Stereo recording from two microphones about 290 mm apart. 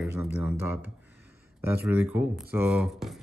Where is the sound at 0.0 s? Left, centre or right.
Centre.